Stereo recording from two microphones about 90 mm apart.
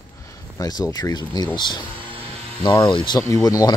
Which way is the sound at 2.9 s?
55° left (ahead or behind).